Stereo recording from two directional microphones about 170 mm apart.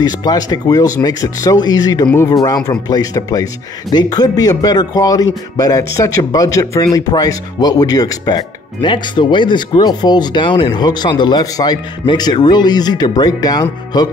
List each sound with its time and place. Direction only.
0.0 s speech: 20° left (ahead or behind)